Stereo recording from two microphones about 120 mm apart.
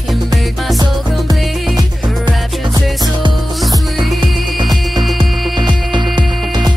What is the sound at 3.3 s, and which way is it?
Music, centre (ahead or behind).